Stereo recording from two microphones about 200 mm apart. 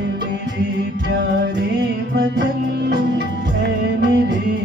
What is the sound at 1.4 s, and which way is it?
Music, 55° right (ahead or behind).